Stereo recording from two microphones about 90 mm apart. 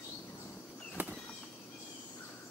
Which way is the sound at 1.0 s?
20° right (ahead or behind).